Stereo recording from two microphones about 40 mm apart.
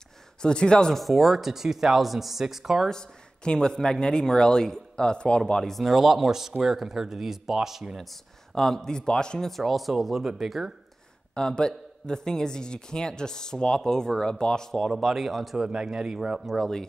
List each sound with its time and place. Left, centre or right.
0.4 s a man's voice: left
0.9 s speech: centre
2.9 s a man's voice: centre
5.6 s speech: centre
8.0 s a man's voice: centre
9.5 s speech: centre
11.3 s a man's voice: centre
14.8 s speech: centre
15.5 s speech: centre